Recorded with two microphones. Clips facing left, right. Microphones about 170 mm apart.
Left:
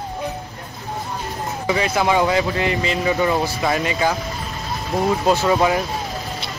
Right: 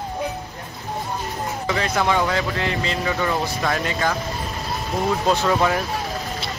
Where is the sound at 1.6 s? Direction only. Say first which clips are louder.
Left 3 dB; 10° left (ahead or behind).